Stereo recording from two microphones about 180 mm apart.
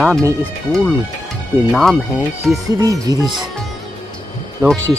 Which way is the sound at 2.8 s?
20° right (ahead or behind).